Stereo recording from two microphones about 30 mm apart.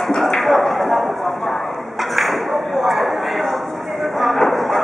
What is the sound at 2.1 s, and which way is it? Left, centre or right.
Ping, centre.